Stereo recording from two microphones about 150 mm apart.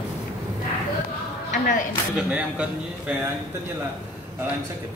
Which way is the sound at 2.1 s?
10° right (ahead or behind).